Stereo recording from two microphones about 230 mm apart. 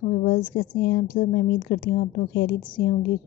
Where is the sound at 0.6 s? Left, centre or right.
Left.